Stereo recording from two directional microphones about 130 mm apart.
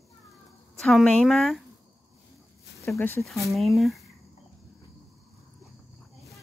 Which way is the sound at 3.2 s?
Centre (ahead or behind).